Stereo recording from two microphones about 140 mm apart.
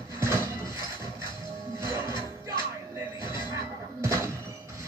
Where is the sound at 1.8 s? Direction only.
20° right (ahead or behind).